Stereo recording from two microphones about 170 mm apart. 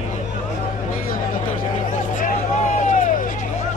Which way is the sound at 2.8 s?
45° left (ahead or behind).